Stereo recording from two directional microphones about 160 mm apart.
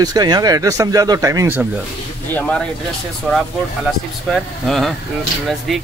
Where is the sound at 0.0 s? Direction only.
25° right (ahead or behind).